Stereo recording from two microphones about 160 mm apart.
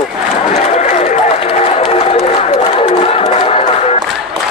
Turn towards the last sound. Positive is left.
turn(degrees=40)  # may be behind; listen again after turning